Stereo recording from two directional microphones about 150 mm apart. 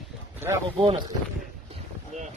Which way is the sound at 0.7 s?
35° right (ahead or behind).